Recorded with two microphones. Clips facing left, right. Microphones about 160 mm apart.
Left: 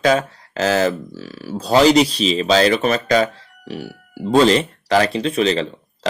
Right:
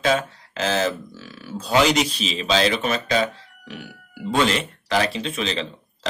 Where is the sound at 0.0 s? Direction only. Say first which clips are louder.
Left 5 dB; 40° left (ahead or behind).